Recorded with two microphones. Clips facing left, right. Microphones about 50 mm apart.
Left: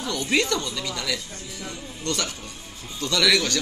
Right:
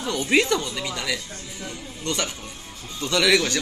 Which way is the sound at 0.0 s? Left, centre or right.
Right.